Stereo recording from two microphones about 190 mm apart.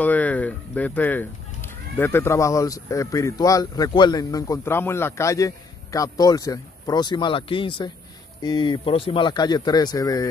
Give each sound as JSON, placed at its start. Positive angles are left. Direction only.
{"t": 0.0, "sound": "speech", "side_deg": 10}